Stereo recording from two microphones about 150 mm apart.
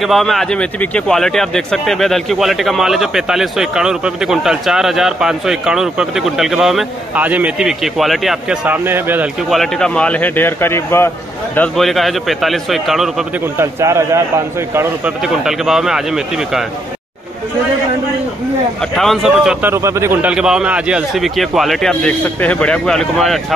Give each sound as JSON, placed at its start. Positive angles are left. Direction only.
{"t": 0.0, "sound": "speech", "side_deg": 0}
{"t": 9.5, "sound": "a man's voice", "side_deg": 5}
{"t": 11.5, "sound": "speech", "side_deg": 5}
{"t": 13.6, "sound": "a man's voice", "side_deg": -20}
{"t": 15.2, "sound": "speech", "side_deg": -5}
{"t": 18.8, "sound": "speech", "side_deg": 0}
{"t": 19.7, "sound": "speech", "side_deg": -20}